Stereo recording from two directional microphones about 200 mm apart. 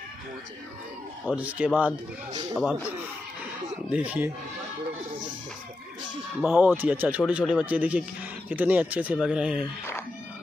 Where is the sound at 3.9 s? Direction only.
5° right (ahead or behind).